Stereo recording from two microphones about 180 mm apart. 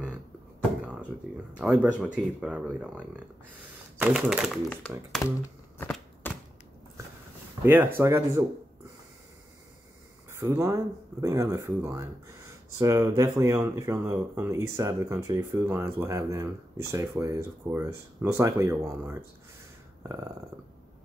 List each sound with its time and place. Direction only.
1.6 s speech: 5° right (ahead or behind)
4.0 s speech: 5° right (ahead or behind)
6.2 s typewriter: 10° left (ahead or behind)
7.6 s speech: 10° right (ahead or behind)
10.3 s speech: 15° right (ahead or behind)
20.0 s a sound: 15° right (ahead or behind)